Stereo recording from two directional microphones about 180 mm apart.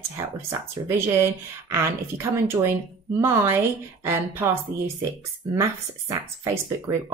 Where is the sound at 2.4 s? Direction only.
10° right (ahead or behind).